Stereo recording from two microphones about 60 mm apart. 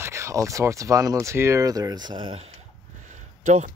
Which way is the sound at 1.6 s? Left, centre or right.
Right.